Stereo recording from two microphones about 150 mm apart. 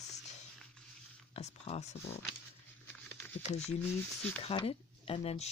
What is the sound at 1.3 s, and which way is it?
Speech, 45° left (ahead or behind).